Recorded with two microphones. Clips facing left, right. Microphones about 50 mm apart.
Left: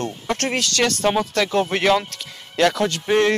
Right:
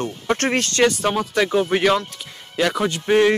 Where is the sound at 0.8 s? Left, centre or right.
Centre.